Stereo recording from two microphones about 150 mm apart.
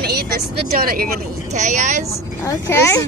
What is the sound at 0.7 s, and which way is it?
Speech, 80° right.